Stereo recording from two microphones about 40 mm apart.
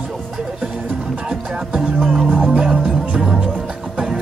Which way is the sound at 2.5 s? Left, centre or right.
Right.